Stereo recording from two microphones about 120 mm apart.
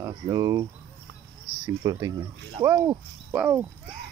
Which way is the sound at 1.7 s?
30° right (ahead or behind).